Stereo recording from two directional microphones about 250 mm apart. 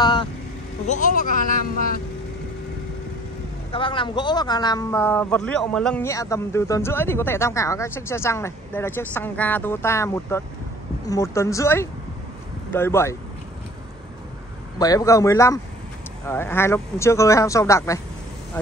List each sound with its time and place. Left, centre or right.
0.0 s vehicle: centre
0.8 s speech: left
3.7 s speech: left
14.8 s speech: centre